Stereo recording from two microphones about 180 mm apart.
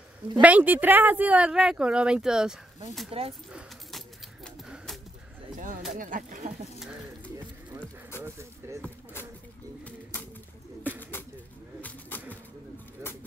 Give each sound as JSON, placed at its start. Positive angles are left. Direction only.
{"t": 0.4, "sound": "speech", "side_deg": -10}
{"t": 3.1, "sound": "speech", "side_deg": -30}
{"t": 5.9, "sound": "speech", "side_deg": -50}
{"t": 8.2, "sound": "speech", "side_deg": -15}
{"t": 8.8, "sound": "a sound", "side_deg": 10}
{"t": 10.8, "sound": "bird", "side_deg": 10}